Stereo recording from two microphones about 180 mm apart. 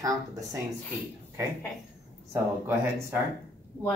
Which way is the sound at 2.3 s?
15° right (ahead or behind).